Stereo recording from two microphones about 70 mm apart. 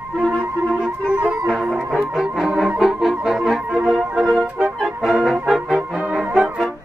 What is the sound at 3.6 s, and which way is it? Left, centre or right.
Organ, centre.